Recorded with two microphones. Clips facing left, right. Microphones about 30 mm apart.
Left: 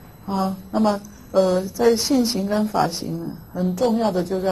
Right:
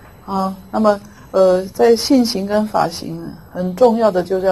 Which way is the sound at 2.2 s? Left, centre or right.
Right.